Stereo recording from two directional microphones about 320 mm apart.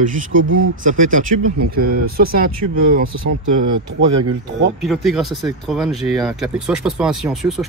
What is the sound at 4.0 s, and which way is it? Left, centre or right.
Speech, right.